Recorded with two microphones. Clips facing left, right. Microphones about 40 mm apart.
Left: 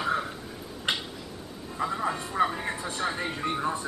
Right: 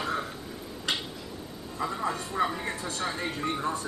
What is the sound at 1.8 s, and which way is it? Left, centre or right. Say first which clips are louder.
Vehicle: left 2 dB; centre.